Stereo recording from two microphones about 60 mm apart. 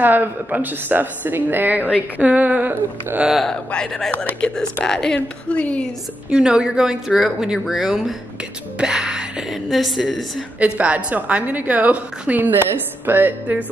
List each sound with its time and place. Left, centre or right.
0.0 s a woman's voice: right
3.4 s a woman's voice: centre
6.3 s a woman's voice: centre
10.8 s a woman's voice: right